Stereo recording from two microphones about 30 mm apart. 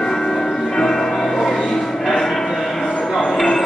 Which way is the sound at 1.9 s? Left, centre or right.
Centre.